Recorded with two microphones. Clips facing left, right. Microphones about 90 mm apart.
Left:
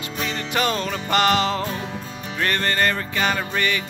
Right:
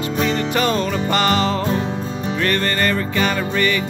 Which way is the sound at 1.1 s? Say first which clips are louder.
Even; 10° left (ahead or behind).